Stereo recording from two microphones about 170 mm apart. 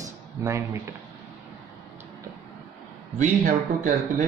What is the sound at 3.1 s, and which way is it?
Speech, 45° right (ahead or behind).